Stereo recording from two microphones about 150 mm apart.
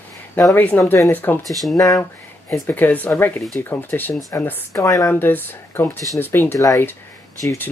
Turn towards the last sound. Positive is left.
turn(degrees=20)  # may be behind; listen again after turning